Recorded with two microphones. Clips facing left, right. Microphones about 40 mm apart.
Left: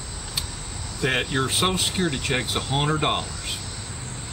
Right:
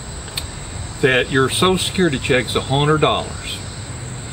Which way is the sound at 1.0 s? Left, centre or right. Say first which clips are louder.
Right 9 dB; right.